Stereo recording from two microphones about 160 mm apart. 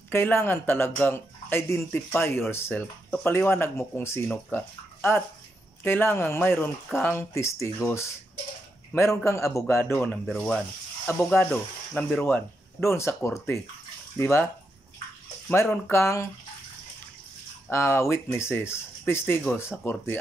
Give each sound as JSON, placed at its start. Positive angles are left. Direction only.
{"t": 0.1, "sound": "speech", "side_deg": 15}
{"t": 10.2, "sound": "speech", "side_deg": 5}
{"t": 15.4, "sound": "speech", "side_deg": 15}
{"t": 17.6, "sound": "speech", "side_deg": 15}